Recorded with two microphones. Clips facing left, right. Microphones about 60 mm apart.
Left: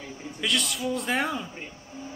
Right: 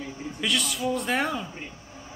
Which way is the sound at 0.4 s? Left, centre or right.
Centre.